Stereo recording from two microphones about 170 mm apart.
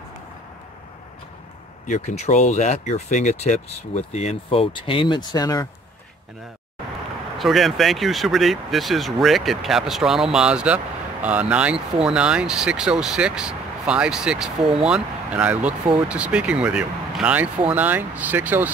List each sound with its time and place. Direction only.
1.9 s speech: 40° left (ahead or behind); by 5.7 s 20° left (ahead or behind)
7.3 s speech: centre (ahead or behind)